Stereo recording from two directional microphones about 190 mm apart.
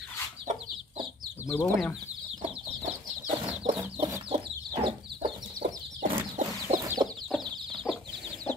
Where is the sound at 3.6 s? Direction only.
30° right (ahead or behind).